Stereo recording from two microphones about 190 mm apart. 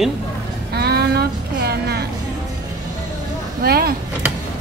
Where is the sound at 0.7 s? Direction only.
55° right (ahead or behind).